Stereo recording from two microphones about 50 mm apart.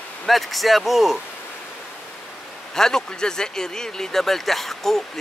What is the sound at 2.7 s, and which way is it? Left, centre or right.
Speech, centre.